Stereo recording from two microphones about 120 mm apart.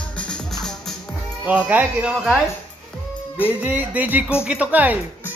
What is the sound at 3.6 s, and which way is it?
Speech, 15° right (ahead or behind).